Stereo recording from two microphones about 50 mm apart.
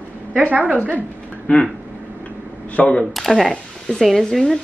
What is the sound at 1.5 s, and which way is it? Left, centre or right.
Speech, left.